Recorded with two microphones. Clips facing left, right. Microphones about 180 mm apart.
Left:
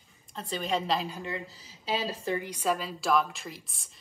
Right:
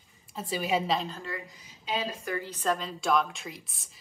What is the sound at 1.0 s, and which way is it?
Speech, 10° left (ahead or behind).